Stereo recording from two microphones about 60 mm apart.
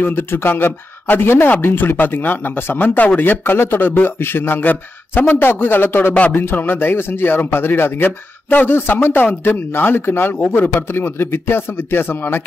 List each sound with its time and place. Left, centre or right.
0.0 s speech: left
6.1 s speech: left